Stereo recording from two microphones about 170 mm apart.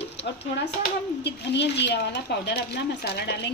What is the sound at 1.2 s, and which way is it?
A woman's voice, 85° left.